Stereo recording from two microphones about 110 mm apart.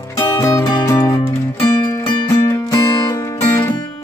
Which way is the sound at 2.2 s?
30° left (ahead or behind).